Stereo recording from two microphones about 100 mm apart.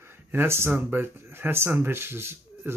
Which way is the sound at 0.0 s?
20° right (ahead or behind).